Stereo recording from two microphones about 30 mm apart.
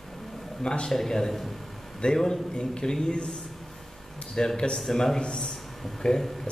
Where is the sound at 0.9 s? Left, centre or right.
Centre.